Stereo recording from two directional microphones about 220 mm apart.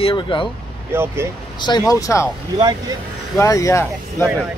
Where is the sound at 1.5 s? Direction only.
20° left (ahead or behind).